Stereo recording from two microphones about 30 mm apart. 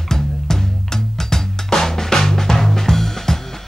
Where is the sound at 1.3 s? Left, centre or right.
Centre.